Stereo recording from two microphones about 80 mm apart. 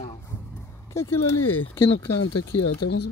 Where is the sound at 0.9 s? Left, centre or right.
Left.